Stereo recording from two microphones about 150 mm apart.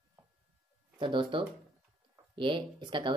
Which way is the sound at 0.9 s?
35° right (ahead or behind).